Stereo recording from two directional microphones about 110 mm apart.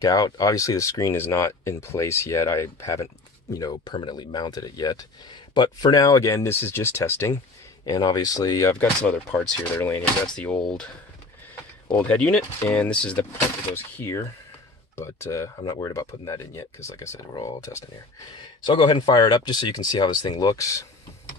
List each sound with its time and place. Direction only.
0.0 s speech: 35° left (ahead or behind)
3.5 s speech: 40° left (ahead or behind)
7.8 s speech: 35° left (ahead or behind)
9.0 s speech: 10° left (ahead or behind)
11.9 s speech: 10° left (ahead or behind)
13.9 s speech: 25° left (ahead or behind)
18.6 s speech: 45° left (ahead or behind); by 20.8 s 30° left (ahead or behind)